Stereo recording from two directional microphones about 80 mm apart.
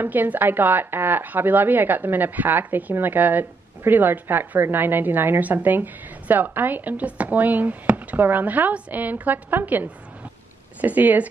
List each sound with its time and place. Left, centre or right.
0.0 s a woman's voice: right